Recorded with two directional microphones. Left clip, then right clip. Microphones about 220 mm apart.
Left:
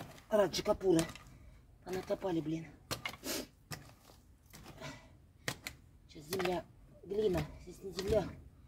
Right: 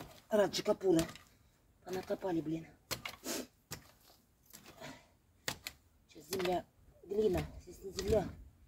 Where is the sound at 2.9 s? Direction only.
Centre (ahead or behind).